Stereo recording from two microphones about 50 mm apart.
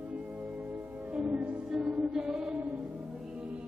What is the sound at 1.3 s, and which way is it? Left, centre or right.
Music, right.